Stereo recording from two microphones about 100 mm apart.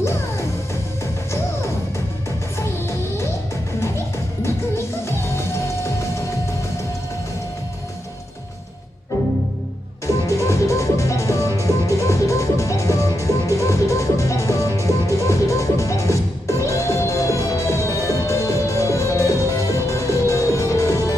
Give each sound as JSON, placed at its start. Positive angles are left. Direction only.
{"t": 2.6, "sound": "music", "side_deg": 25}
{"t": 10.0, "sound": "music", "side_deg": 30}